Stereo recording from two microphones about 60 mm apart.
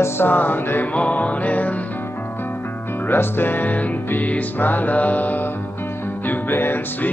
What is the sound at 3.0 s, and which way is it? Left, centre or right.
Music, left.